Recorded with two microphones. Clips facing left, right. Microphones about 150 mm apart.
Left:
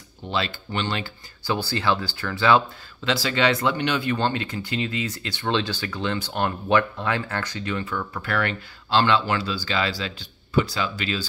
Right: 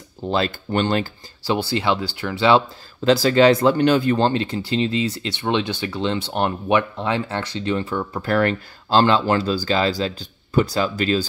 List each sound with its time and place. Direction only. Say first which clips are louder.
0.3 s speech: right 6 dB; 45° right (ahead or behind)
1.5 s speech: right 3 dB; 20° right (ahead or behind)
3.0 s speech: right 8 dB; 40° right (ahead or behind)